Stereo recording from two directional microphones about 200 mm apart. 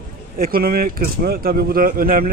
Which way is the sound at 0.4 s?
50° right (ahead or behind).